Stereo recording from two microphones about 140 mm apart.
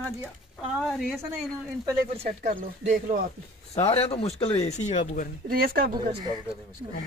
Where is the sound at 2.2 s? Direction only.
60° right (ahead or behind).